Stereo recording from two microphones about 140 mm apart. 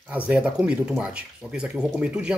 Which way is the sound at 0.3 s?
5° right (ahead or behind).